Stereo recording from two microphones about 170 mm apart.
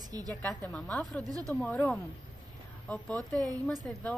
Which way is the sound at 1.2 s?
20° right (ahead or behind).